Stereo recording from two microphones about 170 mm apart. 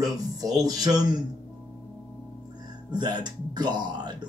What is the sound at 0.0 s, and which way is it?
Speech, 20° right (ahead or behind).